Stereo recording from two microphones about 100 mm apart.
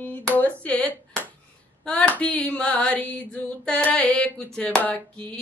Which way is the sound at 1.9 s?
15° left (ahead or behind).